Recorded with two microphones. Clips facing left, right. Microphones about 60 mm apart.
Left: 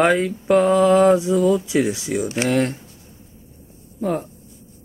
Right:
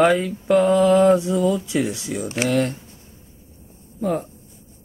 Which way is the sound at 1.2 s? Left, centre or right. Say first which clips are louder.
Left 3 dB; centre.